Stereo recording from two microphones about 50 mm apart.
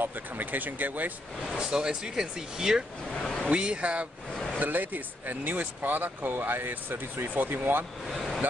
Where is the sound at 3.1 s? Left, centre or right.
Centre.